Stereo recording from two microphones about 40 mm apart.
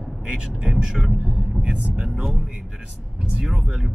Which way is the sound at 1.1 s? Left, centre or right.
Right.